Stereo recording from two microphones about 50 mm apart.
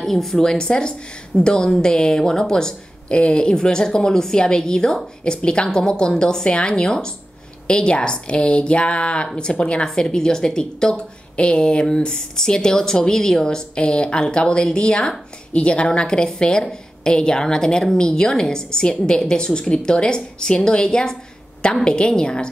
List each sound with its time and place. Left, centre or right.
0.0 s a woman's voice: centre